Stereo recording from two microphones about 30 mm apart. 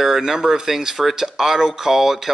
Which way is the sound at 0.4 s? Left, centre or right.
Centre.